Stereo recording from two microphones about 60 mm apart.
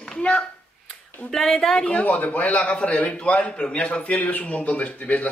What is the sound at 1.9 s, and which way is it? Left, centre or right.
A man's voice, left.